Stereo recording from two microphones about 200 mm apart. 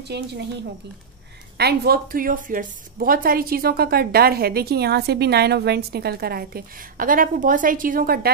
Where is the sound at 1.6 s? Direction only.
50° right (ahead or behind).